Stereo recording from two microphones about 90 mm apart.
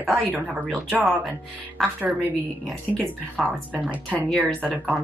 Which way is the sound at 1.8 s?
Centre (ahead or behind).